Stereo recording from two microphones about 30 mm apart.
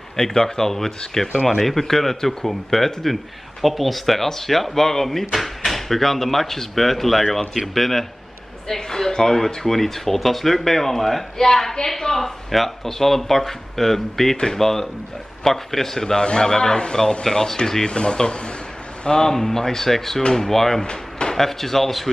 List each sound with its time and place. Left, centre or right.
0.1 s a man's voice: centre
20.8 s drawer open or close: left
21.4 s speech: centre